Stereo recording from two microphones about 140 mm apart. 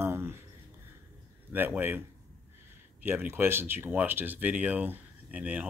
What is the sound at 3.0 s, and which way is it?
Speech, 15° right (ahead or behind).